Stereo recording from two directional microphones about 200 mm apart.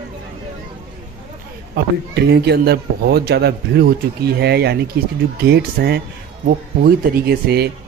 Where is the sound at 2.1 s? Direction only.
55° right (ahead or behind).